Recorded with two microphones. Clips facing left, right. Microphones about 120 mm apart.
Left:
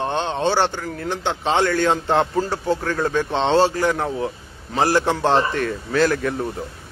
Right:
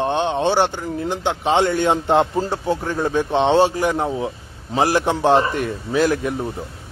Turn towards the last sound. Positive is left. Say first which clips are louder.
# even
turn(degrees=-15)  # may be behind; listen again after turning